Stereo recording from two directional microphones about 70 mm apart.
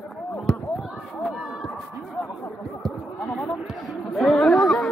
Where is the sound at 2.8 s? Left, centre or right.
Centre.